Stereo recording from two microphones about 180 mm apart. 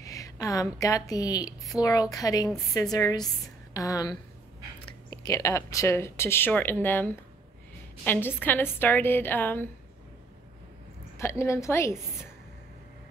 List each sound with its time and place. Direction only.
0.0 s a woman's voice: 20° left (ahead or behind)
11.1 s speech: 15° left (ahead or behind)